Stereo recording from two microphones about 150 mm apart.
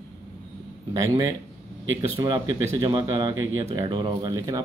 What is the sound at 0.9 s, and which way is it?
Speech, 25° right (ahead or behind).